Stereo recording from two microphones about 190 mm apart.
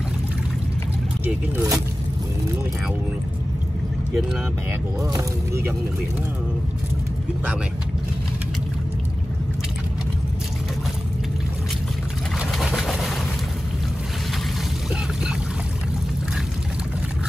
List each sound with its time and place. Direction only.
1.2 s speech: 10° right (ahead or behind)
5.0 s speech: 15° right (ahead or behind)
12.4 s vehicle: centre (ahead or behind)